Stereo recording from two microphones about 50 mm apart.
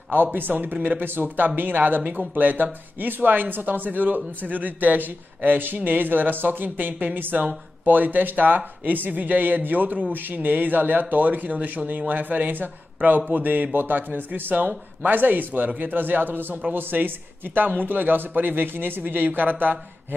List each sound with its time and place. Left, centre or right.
0.1 s speech: right